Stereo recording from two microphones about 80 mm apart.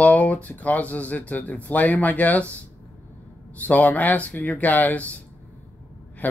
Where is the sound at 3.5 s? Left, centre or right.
Centre.